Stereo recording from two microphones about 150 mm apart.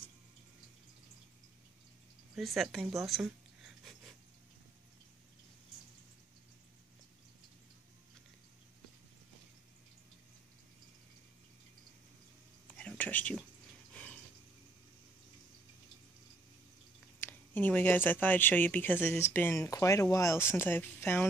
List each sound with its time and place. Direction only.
2.3 s speech: centre (ahead or behind)
12.6 s whispering: 10° left (ahead or behind)
17.2 s speech: 15° left (ahead or behind)